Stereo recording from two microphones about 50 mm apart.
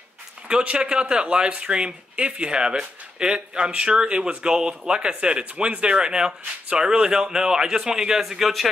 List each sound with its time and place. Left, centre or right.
0.5 s speech: centre